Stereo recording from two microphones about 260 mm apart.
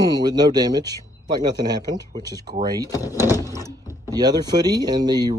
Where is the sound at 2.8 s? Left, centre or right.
Centre.